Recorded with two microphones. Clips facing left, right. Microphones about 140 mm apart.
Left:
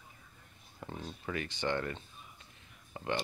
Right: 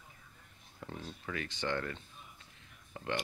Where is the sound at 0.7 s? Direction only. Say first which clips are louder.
Left 1 dB; 15° left (ahead or behind).